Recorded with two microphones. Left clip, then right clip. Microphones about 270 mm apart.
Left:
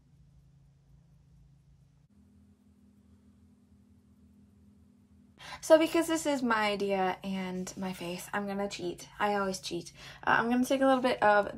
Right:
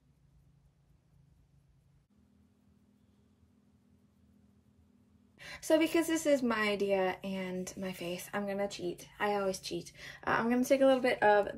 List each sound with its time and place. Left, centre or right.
5.4 s speech: centre